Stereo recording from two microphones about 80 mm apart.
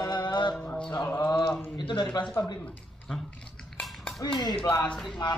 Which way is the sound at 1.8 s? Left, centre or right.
Left.